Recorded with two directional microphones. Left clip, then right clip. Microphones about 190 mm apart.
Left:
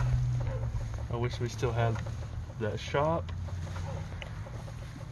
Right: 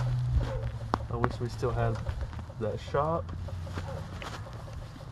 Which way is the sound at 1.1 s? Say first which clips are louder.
Right 3 dB; 30° left (ahead or behind).